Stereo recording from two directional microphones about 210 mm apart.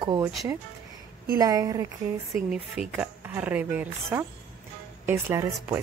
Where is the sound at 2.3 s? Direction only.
5° right (ahead or behind).